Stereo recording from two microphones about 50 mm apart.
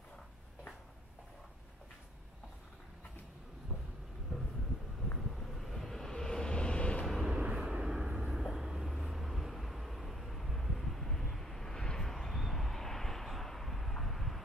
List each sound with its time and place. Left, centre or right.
4.3 s vehicle: centre
5.5 s vehicle: centre; by 7.1 s left
7.2 s vehicle: centre
8.3 s vehicle: centre